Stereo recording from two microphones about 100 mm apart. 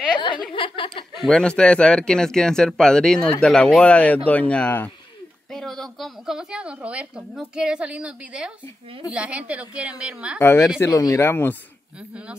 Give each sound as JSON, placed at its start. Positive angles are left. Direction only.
{"t": 0.2, "sound": "a woman's voice", "side_deg": 55}
{"t": 1.1, "sound": "speech", "side_deg": 5}
{"t": 5.5, "sound": "a woman's voice", "side_deg": 5}
{"t": 10.4, "sound": "speech", "side_deg": 25}
{"t": 10.8, "sound": "speech", "side_deg": 35}